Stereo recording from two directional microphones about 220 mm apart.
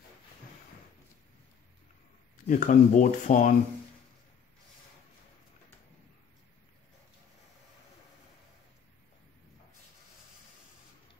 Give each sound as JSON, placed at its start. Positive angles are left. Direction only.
{"t": 2.4, "sound": "speech", "side_deg": 35}